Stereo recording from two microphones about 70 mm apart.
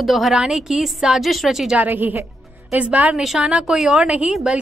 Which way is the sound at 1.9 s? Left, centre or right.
Right.